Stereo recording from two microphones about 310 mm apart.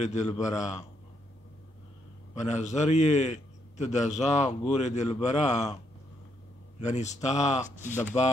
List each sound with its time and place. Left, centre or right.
0.0 s a man's voice: left
2.3 s a man's voice: left
6.8 s a man's voice: left
7.9 s speech: centre